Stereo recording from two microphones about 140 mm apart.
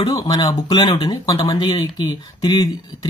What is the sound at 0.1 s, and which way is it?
Speech, 30° left (ahead or behind).